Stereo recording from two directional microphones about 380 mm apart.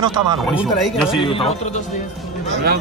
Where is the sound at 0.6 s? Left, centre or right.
Centre.